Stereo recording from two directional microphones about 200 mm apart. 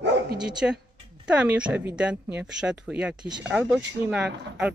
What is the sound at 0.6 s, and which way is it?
Speech, 5° right (ahead or behind).